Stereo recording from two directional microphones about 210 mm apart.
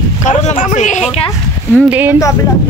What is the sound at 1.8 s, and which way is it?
Speech, 10° right (ahead or behind).